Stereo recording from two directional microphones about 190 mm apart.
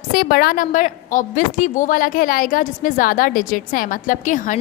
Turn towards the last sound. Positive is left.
turn(degrees=40)  # may be behind; listen again after turning